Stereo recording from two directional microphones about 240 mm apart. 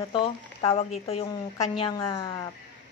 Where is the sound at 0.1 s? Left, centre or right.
Centre.